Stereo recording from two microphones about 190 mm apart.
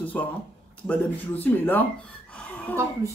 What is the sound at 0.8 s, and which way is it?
Speech, 10° left (ahead or behind).